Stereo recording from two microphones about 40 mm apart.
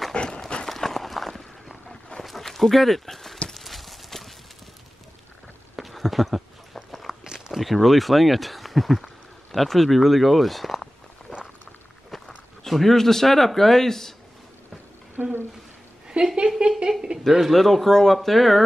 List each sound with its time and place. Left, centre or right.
0.1 s horse: left
0.7 s run: centre
2.1 s a sound: centre
3.4 s clip-clop: centre
5.8 s a sound: centre
7.2 s walk: centre
7.5 s speech: centre
12.1 s walk: centre
12.6 s speech: centre
15.2 s a sound: right
16.1 s speech: centre
17.3 s speech: centre